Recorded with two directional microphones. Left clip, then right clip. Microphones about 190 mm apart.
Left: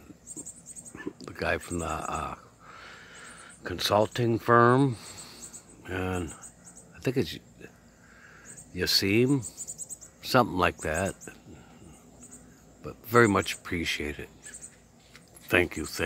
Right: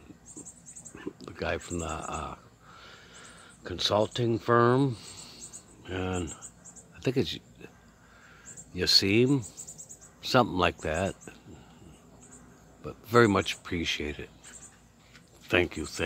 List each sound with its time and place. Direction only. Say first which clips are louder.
1.2 s a sound: left 3 dB; 10° left (ahead or behind)
8.7 s speech: right 2 dB; centre (ahead or behind)
12.8 s speech: left 1 dB; centre (ahead or behind)
15.4 s speech: left 1 dB; 5° left (ahead or behind)